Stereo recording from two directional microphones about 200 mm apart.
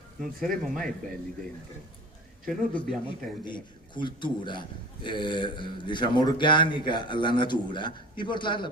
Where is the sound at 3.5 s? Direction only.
25° left (ahead or behind).